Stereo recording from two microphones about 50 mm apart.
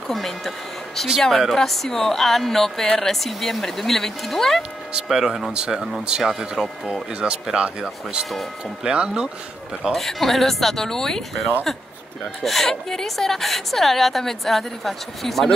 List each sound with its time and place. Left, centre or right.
0.1 s a woman's voice: centre
5.0 s speech: centre
8.3 s a woman's voice: centre
8.8 s speech: centre
9.9 s a woman's voice: centre